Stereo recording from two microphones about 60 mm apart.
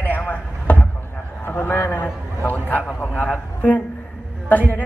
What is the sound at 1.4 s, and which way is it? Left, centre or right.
A man's voice, left.